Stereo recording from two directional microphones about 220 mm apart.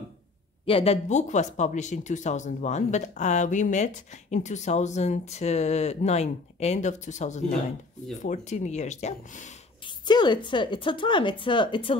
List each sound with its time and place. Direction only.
0.7 s speech: 25° left (ahead or behind)
9.8 s speech: 20° left (ahead or behind)